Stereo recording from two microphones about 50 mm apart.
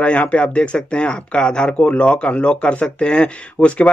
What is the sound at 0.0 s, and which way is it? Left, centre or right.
Speech, left.